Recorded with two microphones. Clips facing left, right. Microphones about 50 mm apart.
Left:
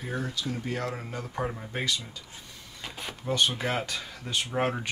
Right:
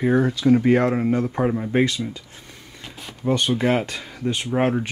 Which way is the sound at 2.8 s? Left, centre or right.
Centre.